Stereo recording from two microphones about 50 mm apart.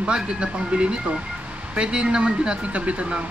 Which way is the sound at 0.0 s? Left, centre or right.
Centre.